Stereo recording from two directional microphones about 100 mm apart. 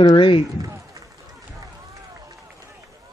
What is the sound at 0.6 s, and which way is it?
Run, 35° right (ahead or behind).